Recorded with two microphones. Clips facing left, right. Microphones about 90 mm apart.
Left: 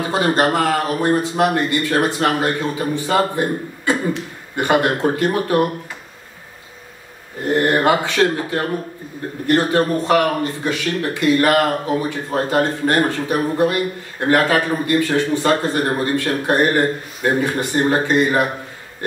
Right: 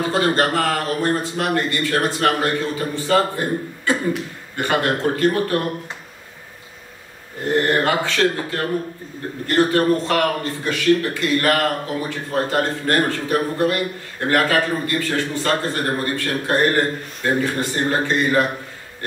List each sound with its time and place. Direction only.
0.1 s speech: 15° left (ahead or behind)
7.6 s speech: 20° left (ahead or behind)